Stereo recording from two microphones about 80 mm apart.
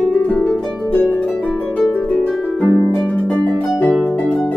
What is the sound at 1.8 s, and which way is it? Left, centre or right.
Harp, centre.